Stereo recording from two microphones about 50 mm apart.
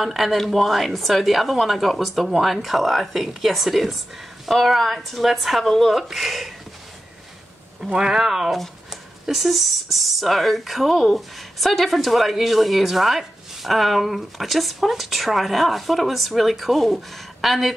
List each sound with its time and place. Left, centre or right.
0.0 s speech: centre
7.8 s speech: centre